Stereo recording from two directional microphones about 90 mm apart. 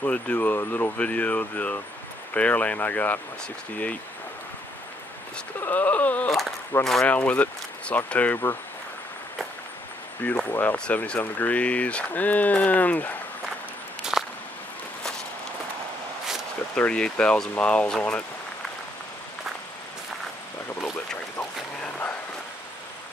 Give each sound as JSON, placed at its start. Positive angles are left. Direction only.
{"t": 0.0, "sound": "speech", "side_deg": 15}
{"t": 5.6, "sound": "speech", "side_deg": 20}
{"t": 6.8, "sound": "speech", "side_deg": 5}
{"t": 7.1, "sound": "speech", "side_deg": 15}
{"t": 10.2, "sound": "speech", "side_deg": 15}
{"t": 14.1, "sound": "a sound", "side_deg": -5}
{"t": 16.7, "sound": "speech", "side_deg": 10}
{"t": 21.8, "sound": "a sound", "side_deg": 20}